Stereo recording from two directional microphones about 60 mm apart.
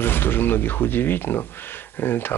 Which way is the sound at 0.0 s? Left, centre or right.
Left.